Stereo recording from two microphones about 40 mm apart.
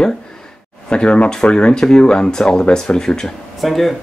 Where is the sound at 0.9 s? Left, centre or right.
Left.